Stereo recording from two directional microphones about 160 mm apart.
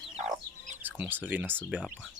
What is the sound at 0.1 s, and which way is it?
Chicken, 45° right (ahead or behind).